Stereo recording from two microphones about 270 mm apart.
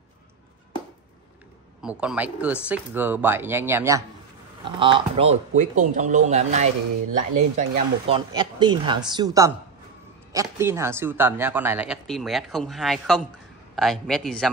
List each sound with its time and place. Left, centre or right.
1.8 s speech: centre